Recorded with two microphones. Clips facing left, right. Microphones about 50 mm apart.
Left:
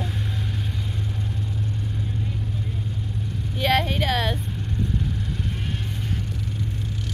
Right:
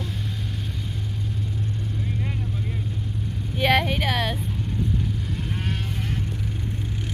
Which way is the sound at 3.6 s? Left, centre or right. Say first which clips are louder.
Right 1 dB; centre.